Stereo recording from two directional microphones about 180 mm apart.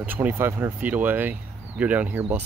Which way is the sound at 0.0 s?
10° right (ahead or behind).